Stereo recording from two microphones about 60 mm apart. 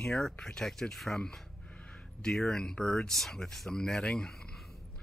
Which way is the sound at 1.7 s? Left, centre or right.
Left.